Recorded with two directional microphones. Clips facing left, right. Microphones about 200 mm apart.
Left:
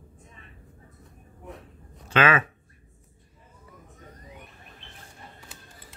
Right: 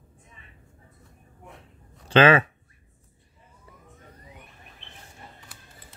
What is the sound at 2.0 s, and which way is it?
Speech, 30° right (ahead or behind).